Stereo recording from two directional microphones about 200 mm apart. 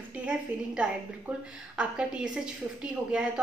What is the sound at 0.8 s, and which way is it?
A woman's voice, 5° right (ahead or behind).